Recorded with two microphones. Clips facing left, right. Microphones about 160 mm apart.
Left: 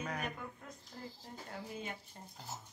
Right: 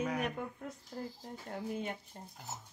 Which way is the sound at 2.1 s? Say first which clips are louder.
Right 3 dB; 40° right (ahead or behind).